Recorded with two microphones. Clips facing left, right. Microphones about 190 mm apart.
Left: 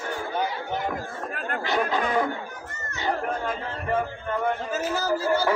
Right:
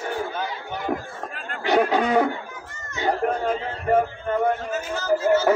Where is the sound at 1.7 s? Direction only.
70° right (ahead or behind).